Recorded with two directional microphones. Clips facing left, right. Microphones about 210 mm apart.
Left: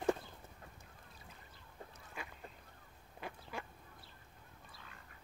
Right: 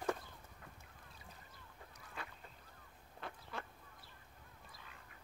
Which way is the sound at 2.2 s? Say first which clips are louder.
Left 2 dB; 10° left (ahead or behind).